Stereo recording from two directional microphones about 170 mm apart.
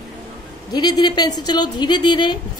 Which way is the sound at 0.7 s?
25° left (ahead or behind).